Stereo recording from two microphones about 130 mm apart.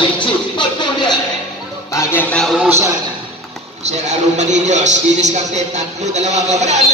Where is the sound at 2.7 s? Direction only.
20° right (ahead or behind).